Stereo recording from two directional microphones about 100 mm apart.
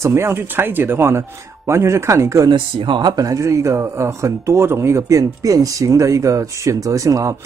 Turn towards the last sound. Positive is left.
turn(degrees=-35)  # may be behind; listen again after turning